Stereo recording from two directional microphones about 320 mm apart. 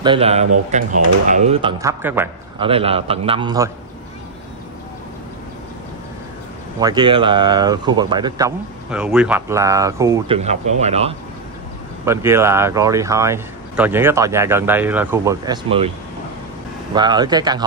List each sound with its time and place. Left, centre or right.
0.0 s speech: centre
2.7 s speech: centre
6.8 s speech: centre
12.0 s speech: centre
16.9 s speech: centre